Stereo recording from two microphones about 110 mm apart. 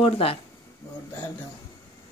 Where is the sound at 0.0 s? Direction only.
60° left (ahead or behind).